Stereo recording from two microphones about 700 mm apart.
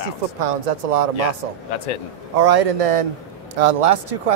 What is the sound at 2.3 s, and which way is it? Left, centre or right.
Speech, right.